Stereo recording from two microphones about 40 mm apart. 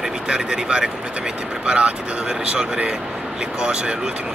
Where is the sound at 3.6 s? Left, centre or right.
Right.